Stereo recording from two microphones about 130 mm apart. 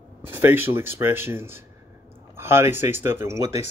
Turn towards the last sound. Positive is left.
turn(degrees=-20)  # may be behind; listen again after turning